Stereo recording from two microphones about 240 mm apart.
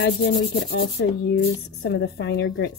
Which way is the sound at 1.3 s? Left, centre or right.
Left.